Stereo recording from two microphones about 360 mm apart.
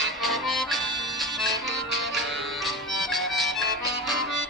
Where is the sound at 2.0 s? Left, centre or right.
Centre.